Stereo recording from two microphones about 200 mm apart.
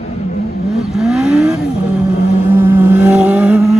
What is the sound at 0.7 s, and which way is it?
Vehicle, centre (ahead or behind).